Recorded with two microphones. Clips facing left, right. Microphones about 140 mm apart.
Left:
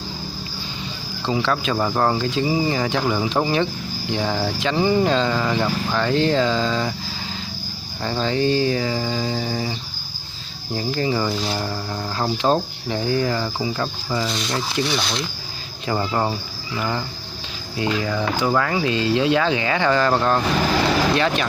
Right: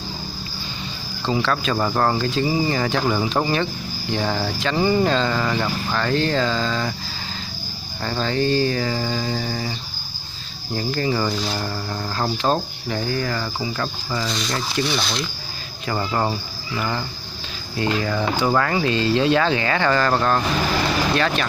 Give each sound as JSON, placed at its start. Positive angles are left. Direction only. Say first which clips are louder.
{"t": 1.2, "sound": "speech", "louder": "even", "side_deg": 15}
{"t": 8.0, "sound": "speech", "louder": "left 1 dB", "side_deg": 15}
{"t": 10.8, "sound": "speech", "louder": "even", "side_deg": 15}
{"t": 12.9, "sound": "cricket", "louder": "left 3 dB", "side_deg": 20}
{"t": 14.9, "sound": "speech", "louder": "even", "side_deg": 20}